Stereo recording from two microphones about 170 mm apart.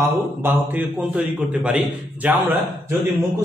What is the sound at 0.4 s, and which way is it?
A man's voice, 10° right (ahead or behind).